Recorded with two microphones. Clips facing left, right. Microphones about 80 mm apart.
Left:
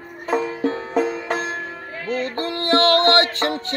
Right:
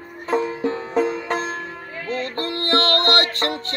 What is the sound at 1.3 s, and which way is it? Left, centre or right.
Music, centre.